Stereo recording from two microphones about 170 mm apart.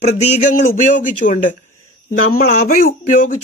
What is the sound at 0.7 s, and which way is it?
Speech, 50° left (ahead or behind).